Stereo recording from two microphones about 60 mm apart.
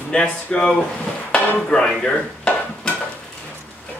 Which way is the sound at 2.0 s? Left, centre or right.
Centre.